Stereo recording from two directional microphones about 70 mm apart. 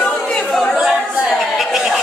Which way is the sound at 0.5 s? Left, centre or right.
Centre.